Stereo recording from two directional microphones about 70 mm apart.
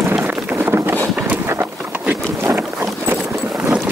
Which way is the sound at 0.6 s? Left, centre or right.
Right.